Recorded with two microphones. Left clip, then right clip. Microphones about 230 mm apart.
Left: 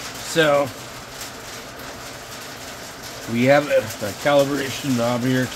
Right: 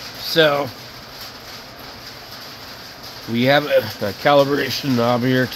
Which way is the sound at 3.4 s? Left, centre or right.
Right.